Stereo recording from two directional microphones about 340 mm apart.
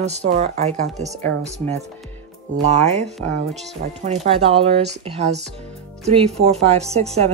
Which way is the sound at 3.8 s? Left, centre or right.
Right.